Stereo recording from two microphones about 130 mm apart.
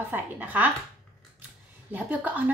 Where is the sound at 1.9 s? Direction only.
10° right (ahead or behind).